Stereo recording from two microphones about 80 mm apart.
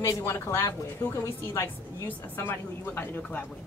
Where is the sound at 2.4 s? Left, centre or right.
Left.